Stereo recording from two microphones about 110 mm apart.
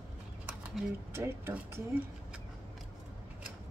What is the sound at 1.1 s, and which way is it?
Speech, 25° right (ahead or behind).